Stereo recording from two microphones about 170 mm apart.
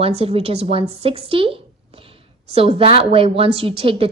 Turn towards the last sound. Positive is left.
turn(degrees=-35)  # may be behind; listen again after turning